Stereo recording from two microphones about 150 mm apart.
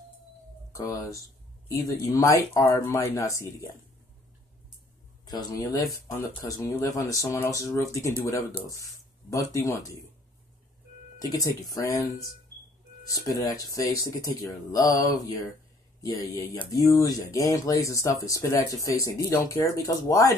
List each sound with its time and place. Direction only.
0.7 s speech: 20° left (ahead or behind)
5.2 s speech: 25° left (ahead or behind)
11.1 s speech: 25° left (ahead or behind)